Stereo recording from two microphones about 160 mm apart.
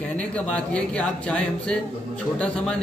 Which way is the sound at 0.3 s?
5° left (ahead or behind).